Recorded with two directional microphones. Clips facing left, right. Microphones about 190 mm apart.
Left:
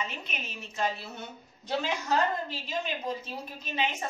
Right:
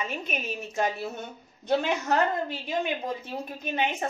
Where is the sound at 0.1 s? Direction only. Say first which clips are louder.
Right 8 dB; 50° right (ahead or behind).